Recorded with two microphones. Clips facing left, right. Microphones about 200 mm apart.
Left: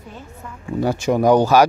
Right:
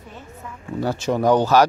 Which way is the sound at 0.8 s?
15° left (ahead or behind).